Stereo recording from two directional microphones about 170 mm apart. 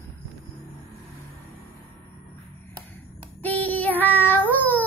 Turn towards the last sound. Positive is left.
turn(degrees=10)  # may be behind; listen again after turning